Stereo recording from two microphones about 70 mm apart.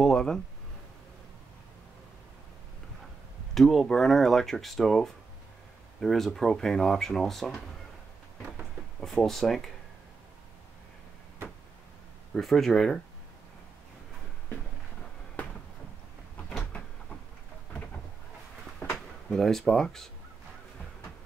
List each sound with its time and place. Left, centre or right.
0.0 s speech: centre
3.5 s speech: centre
9.0 s speech: centre
12.4 s speech: centre
18.8 s a sound: left
19.3 s speech: centre